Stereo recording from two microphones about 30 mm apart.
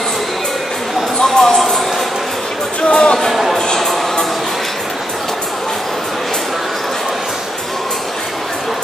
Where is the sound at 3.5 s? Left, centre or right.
Centre.